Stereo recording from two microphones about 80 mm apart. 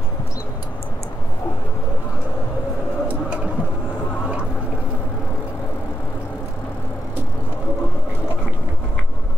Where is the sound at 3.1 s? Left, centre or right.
Centre.